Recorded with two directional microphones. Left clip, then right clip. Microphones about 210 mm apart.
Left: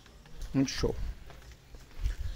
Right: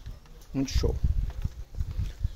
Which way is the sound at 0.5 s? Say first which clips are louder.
Left 1 dB; 5° right (ahead or behind).